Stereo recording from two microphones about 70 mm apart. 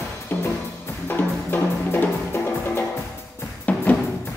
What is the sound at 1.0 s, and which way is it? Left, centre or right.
Music, left.